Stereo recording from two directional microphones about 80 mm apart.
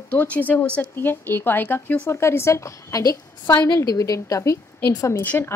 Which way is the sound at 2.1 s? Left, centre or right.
Left.